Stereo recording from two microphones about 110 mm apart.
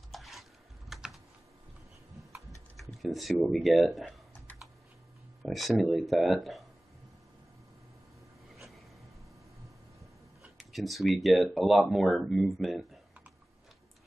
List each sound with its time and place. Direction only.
0.1 s typing: centre (ahead or behind)
2.3 s a sound: 30° right (ahead or behind)
2.8 s speech: centre (ahead or behind)
5.4 s speech: centre (ahead or behind)
8.5 s a sound: centre (ahead or behind)
9.9 s speech: centre (ahead or behind)